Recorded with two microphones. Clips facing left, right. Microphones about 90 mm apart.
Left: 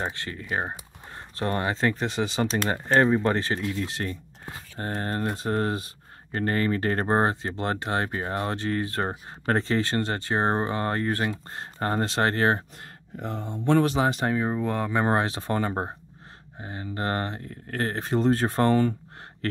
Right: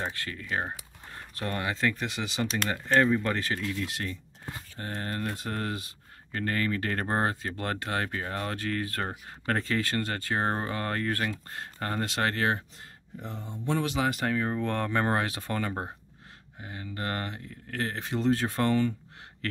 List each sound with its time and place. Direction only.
0.0 s speech: 25° left (ahead or behind)
12.8 s speech: 70° left (ahead or behind)
13.8 s speech: 30° left (ahead or behind); by 15.0 s 10° left (ahead or behind)
15.0 s speech: 25° left (ahead or behind)
17.4 s speech: 45° left (ahead or behind)